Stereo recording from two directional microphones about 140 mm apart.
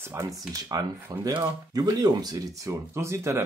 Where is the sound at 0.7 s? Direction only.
25° right (ahead or behind).